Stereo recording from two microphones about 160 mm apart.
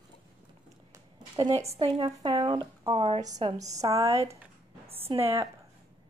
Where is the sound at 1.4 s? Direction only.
25° right (ahead or behind).